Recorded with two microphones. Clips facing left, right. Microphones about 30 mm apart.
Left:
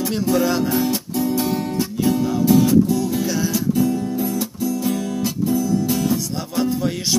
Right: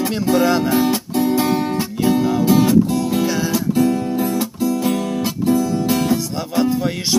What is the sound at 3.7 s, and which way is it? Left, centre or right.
Guitar, right.